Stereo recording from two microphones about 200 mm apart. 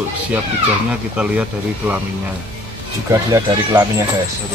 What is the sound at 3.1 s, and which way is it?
Speech, 20° right (ahead or behind).